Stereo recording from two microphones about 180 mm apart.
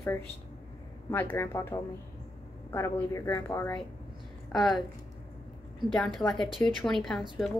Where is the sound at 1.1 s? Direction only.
15° left (ahead or behind).